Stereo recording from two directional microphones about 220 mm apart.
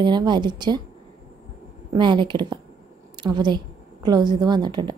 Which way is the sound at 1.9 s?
20° right (ahead or behind).